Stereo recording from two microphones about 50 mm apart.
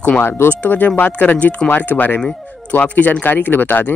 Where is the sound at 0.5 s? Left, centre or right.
Left.